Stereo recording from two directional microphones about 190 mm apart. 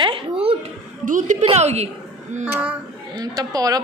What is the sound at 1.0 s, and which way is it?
Speech, 40° right (ahead or behind).